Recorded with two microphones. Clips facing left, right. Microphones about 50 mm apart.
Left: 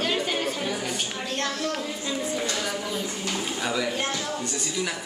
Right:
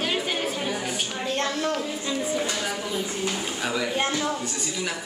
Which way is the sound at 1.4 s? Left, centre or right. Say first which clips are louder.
Right 2 dB; right.